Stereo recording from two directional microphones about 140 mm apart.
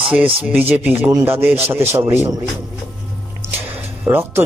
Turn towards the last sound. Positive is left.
turn(degrees=-20)  # may be behind; listen again after turning